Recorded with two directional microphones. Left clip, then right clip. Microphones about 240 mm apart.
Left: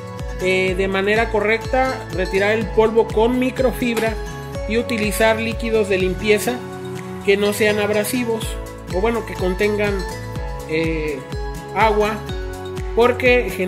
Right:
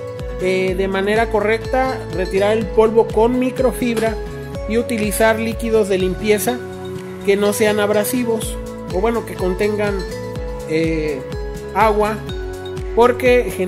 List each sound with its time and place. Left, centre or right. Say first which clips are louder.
0.4 s speech: even; centre
4.6 s speech: right 1 dB; centre
9.0 s speech: right 1 dB; centre
10.7 s music: right 2 dB; right
11.7 s speech: right 1 dB; centre